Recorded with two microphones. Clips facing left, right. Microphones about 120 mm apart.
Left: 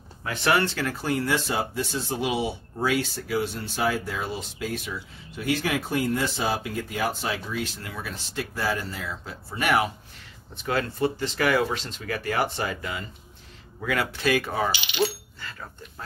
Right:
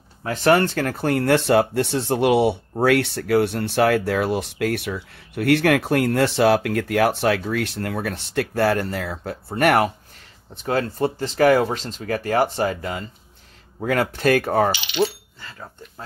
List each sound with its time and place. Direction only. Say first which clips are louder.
0.2 s speech: right 6 dB; 40° right (ahead or behind)
10.5 s speech: right 4 dB; 35° right (ahead or behind)
15.0 s speech: right 2 dB; 25° right (ahead or behind)